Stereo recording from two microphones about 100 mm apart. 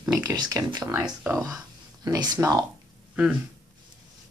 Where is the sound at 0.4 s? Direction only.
40° right (ahead or behind).